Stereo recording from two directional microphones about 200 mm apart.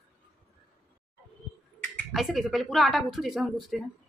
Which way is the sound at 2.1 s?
Centre (ahead or behind).